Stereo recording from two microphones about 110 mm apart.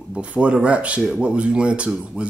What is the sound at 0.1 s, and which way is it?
Speech, 10° right (ahead or behind).